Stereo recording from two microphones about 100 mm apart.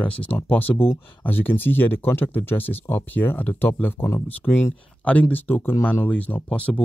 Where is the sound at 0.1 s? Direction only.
15° left (ahead or behind).